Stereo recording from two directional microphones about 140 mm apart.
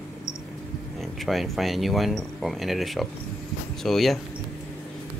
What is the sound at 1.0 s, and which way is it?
Speech, centre (ahead or behind).